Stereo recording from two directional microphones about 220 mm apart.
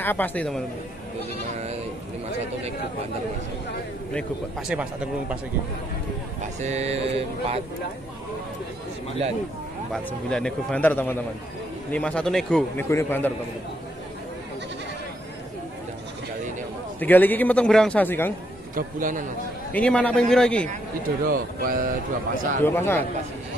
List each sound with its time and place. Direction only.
0.0 s a man's voice: 10° left (ahead or behind)
4.1 s speech: centre (ahead or behind)
6.6 s mantra: 30° right (ahead or behind)
10.3 s a man's voice: 5° left (ahead or behind)
17.0 s a man's voice: 10° left (ahead or behind)
18.8 s speech: 35° right (ahead or behind)
19.7 s speech: 5° left (ahead or behind)
21.3 s speech: 40° right (ahead or behind)
22.6 s a man's voice: 10° left (ahead or behind)